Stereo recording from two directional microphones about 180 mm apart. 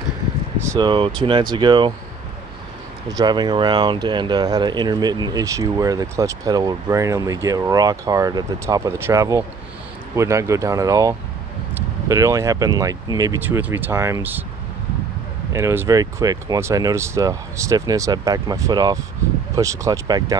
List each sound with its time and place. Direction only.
0.7 s speech: 25° right (ahead or behind)
3.1 s speech: 20° right (ahead or behind)
15.5 s speech: 15° right (ahead or behind)